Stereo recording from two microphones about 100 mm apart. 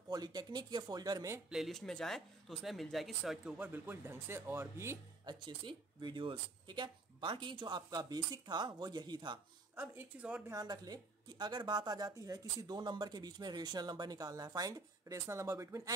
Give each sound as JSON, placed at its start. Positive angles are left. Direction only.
{"t": 0.1, "sound": "speech", "side_deg": -40}
{"t": 1.5, "sound": "speech", "side_deg": 0}
{"t": 3.4, "sound": "speech", "side_deg": -15}
{"t": 5.2, "sound": "speech", "side_deg": -50}
{"t": 9.8, "sound": "speech", "side_deg": -20}
{"t": 10.5, "sound": "a woman's voice", "side_deg": -40}